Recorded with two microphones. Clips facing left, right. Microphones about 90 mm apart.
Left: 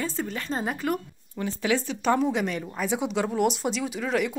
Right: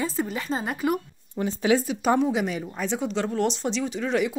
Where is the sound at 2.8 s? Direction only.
10° left (ahead or behind).